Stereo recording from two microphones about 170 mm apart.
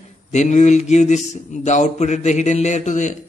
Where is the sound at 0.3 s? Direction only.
45° left (ahead or behind).